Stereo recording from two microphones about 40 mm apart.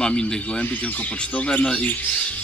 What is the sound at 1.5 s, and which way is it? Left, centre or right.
Speech, left.